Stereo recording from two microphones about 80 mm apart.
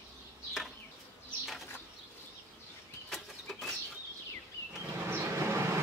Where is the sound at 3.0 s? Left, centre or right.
Centre.